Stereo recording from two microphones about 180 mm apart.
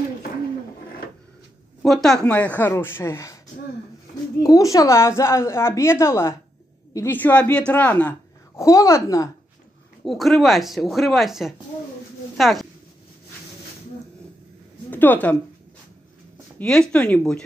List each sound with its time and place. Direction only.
1.8 s speech: centre (ahead or behind)
4.4 s a woman's voice: 20° left (ahead or behind)
10.0 s speech: centre (ahead or behind)
14.9 s a woman's voice: 10° left (ahead or behind)
16.5 s speech: 5° left (ahead or behind)